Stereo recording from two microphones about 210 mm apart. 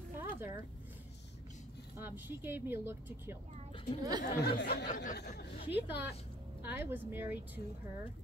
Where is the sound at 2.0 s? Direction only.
10° right (ahead or behind).